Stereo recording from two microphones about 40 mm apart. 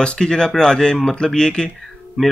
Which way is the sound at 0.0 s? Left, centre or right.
Left.